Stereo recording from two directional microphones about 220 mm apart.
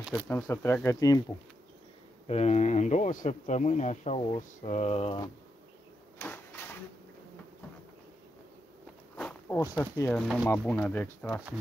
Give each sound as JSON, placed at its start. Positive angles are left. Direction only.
{"t": 0.3, "sound": "speech", "side_deg": 10}
{"t": 2.2, "sound": "speech", "side_deg": 30}
{"t": 6.1, "sound": "printer", "side_deg": 10}
{"t": 9.1, "sound": "walk", "side_deg": 5}
{"t": 9.6, "sound": "speech", "side_deg": 10}